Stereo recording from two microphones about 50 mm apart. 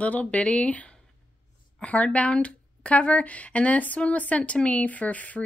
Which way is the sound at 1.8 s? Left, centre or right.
Left.